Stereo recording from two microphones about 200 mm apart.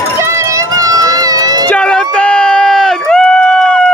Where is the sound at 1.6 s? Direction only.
5° left (ahead or behind).